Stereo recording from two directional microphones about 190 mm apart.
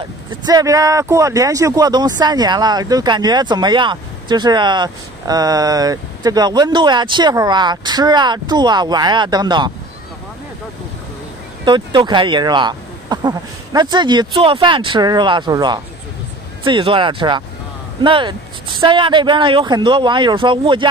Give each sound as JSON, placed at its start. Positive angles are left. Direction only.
{"t": 0.5, "sound": "speech", "side_deg": -20}
{"t": 11.6, "sound": "speech", "side_deg": -25}